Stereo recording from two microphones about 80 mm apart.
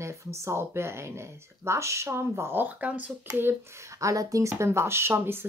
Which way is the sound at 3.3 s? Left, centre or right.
Right.